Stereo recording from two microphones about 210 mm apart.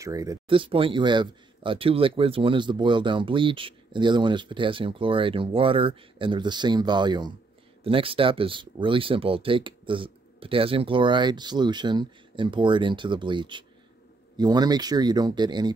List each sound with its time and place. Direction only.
0.0 s speech: 15° right (ahead or behind)